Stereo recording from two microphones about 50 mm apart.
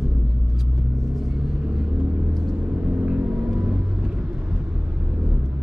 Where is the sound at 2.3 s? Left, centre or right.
Centre.